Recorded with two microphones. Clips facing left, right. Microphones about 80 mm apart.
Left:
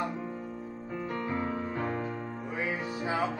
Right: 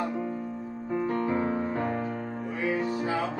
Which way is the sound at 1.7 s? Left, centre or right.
Centre.